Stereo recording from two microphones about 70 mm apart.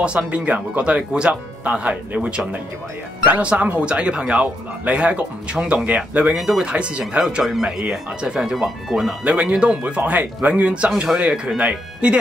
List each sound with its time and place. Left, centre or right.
0.0 s speech: centre
6.3 s speech: centre
7.2 s speech: centre
9.2 s speech: centre